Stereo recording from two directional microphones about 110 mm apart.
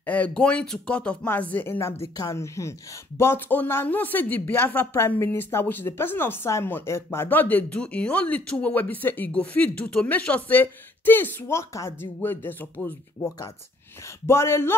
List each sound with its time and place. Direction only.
0.0 s speech: 15° left (ahead or behind)
14.0 s speech: 25° left (ahead or behind)